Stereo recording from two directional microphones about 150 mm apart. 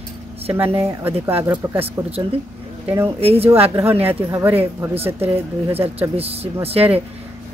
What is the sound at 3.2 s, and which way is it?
Speech, 40° right (ahead or behind).